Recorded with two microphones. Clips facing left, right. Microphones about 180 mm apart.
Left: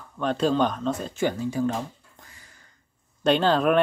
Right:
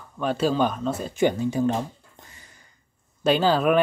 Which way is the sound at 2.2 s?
20° right (ahead or behind).